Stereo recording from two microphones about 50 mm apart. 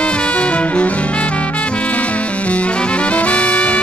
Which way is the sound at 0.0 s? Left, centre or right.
Left.